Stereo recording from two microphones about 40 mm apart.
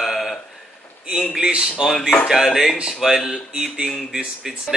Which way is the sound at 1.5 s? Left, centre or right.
Right.